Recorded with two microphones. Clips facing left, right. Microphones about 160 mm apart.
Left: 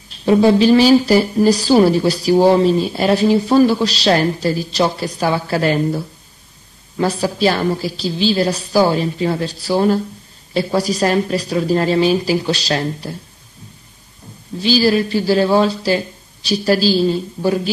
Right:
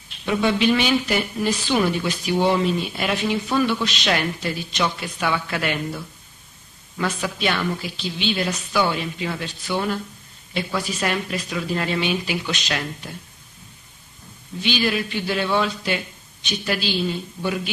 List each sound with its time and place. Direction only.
0.1 s a woman's voice: 35° left (ahead or behind)
14.6 s a woman's voice: 35° left (ahead or behind)